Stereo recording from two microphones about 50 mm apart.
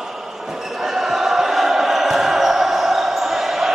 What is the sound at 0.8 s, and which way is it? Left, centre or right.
Basketball bounce, centre.